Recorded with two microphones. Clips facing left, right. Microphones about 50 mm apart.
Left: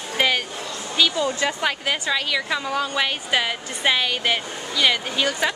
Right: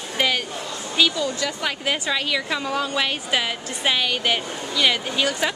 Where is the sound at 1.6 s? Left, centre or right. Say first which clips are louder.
Left 1 dB; centre.